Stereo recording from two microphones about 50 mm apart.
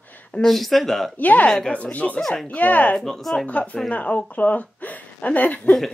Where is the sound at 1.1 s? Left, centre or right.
Left.